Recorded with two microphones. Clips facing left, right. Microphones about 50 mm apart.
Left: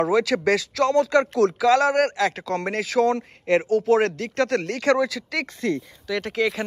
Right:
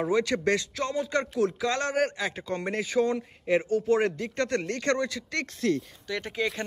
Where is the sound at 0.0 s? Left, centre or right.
Left.